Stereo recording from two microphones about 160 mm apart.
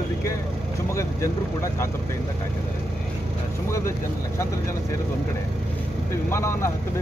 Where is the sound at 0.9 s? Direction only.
20° left (ahead or behind).